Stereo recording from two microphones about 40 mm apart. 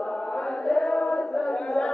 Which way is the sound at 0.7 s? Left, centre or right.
Centre.